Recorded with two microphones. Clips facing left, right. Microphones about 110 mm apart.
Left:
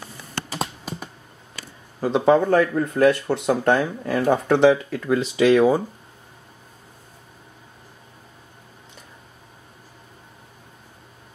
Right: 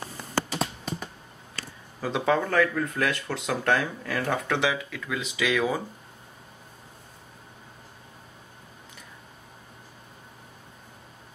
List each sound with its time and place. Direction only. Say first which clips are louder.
2.0 s speech: left 8 dB; 25° left (ahead or behind)
4.5 s speech: left 11 dB; 40° left (ahead or behind)